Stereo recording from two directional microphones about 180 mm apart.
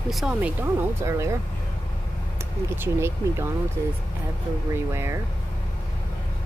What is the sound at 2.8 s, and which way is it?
Speech, 15° right (ahead or behind).